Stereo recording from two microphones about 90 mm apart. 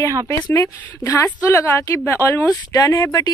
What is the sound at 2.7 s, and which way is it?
Speech, 40° left (ahead or behind).